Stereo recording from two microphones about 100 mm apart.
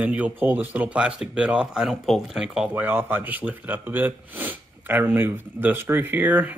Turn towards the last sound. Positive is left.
turn(degrees=-15)  # may be behind; listen again after turning